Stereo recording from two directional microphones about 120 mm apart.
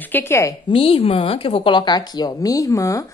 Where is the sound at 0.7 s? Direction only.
50° left (ahead or behind).